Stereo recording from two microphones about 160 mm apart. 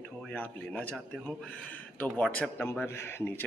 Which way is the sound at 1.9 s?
10° left (ahead or behind).